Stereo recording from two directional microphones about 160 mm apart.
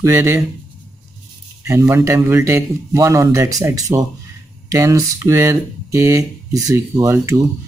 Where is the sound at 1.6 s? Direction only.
15° right (ahead or behind).